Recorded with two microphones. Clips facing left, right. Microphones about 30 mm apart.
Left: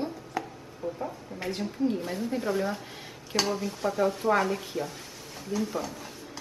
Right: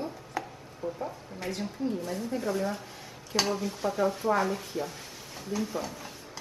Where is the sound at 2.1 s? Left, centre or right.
Centre.